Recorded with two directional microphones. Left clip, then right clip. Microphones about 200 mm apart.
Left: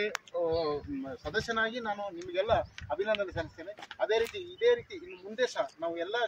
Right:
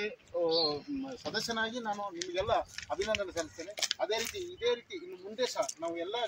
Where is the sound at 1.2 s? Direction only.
Centre (ahead or behind).